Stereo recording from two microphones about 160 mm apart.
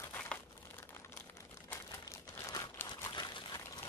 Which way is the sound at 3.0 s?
30° left (ahead or behind).